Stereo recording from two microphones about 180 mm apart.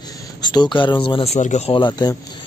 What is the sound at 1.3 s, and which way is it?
Speech, 40° left (ahead or behind).